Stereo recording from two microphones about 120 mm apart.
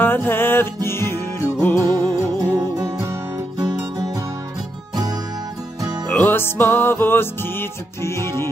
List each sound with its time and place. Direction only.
0.0 s music: 15° left (ahead or behind)
1.9 s music: 30° right (ahead or behind)
5.8 s music: 35° right (ahead or behind)
6.0 s music: 15° left (ahead or behind)